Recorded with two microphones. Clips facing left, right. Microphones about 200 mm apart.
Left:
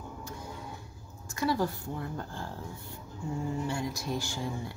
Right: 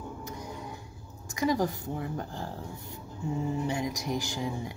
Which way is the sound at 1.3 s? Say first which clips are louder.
Right 2 dB; 15° right (ahead or behind).